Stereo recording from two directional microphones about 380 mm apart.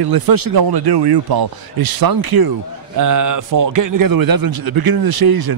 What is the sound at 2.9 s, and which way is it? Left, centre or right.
A man's voice, right.